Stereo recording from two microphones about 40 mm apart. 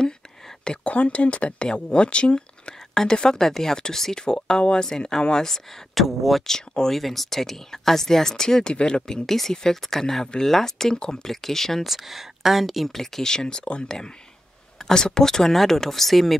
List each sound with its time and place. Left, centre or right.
0.7 s speech: left
2.9 s a sound: centre
3.2 s speech: centre
5.9 s speech: centre
6.4 s speech: centre
6.9 s speech: centre
8.7 s speech: left
11.8 s speech: centre